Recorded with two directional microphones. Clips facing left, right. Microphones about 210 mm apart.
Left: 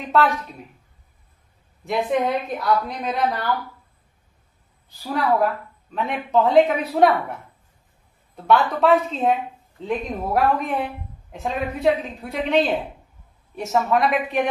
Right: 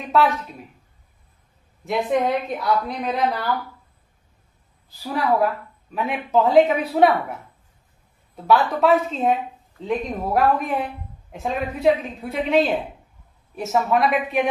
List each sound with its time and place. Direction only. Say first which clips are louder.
1.9 s a woman's voice: right 1 dB; centre (ahead or behind)
4.8 s a woman's voice: even; centre (ahead or behind)
8.5 s a woman's voice: even; centre (ahead or behind)